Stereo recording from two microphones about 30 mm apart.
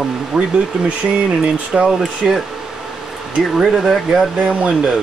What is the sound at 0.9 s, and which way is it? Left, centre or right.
Speech, right.